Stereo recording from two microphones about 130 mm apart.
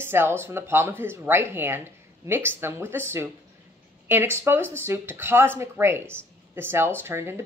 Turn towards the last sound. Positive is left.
turn(degrees=-20)  # may be behind; listen again after turning